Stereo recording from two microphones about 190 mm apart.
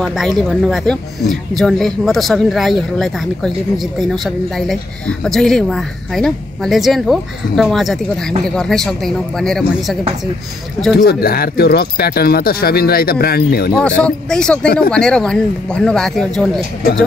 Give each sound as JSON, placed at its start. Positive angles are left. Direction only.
{"t": 0.0, "sound": "speech", "side_deg": 0}
{"t": 11.0, "sound": "speech", "side_deg": 55}
{"t": 13.7, "sound": "speech", "side_deg": 5}